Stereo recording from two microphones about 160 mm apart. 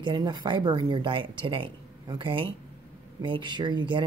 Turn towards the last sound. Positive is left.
turn(degrees=-30)  # may be behind; listen again after turning